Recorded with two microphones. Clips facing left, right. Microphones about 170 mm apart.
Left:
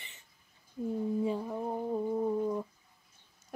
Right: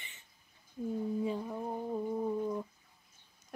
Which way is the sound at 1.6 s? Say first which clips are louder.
Left 3 dB; 20° left (ahead or behind).